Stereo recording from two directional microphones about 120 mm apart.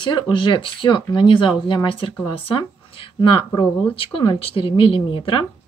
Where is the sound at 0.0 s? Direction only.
40° left (ahead or behind).